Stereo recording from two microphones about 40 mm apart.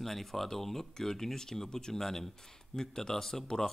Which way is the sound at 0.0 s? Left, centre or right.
Centre.